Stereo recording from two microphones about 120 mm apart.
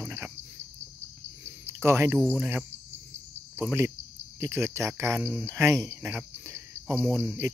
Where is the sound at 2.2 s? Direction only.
15° right (ahead or behind).